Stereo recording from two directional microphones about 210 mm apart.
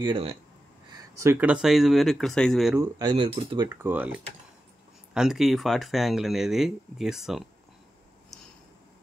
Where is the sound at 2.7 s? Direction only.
15° right (ahead or behind); by 7.4 s centre (ahead or behind).